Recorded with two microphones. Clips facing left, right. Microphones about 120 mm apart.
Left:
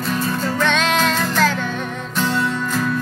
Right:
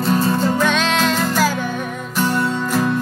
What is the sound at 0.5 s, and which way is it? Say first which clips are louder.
Music: right 1 dB; 5° right (ahead or behind).